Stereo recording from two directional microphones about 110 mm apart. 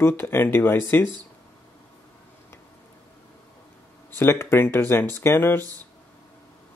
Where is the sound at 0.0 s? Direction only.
20° left (ahead or behind).